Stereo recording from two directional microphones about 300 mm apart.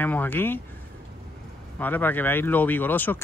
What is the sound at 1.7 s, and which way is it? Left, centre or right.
Speech, centre.